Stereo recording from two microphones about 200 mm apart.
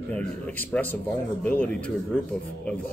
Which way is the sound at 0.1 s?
10° left (ahead or behind).